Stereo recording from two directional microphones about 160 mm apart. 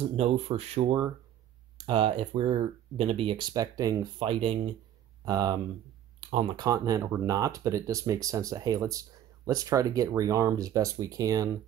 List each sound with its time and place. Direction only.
0.1 s speech: 40° right (ahead or behind); by 4.3 s 20° right (ahead or behind)
4.3 s speech: 35° right (ahead or behind)
5.2 s speech: 25° right (ahead or behind)
6.2 s speech: 35° right (ahead or behind)